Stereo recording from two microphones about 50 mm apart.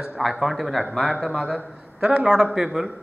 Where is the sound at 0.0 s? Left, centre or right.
Centre.